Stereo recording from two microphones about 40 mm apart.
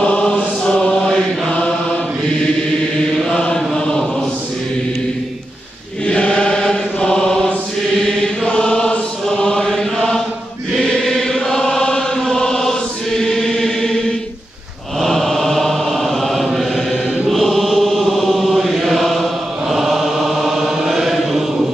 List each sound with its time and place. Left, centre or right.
0.0 s chant: left
3.3 s chant: left
6.0 s chant: left
7.1 s mantra: centre
9.3 s chant: centre